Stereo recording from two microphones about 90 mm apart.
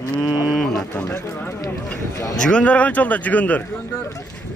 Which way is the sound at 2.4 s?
10° left (ahead or behind).